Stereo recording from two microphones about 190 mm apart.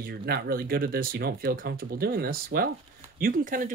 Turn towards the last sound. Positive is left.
turn(degrees=-45)  # may be behind; listen again after turning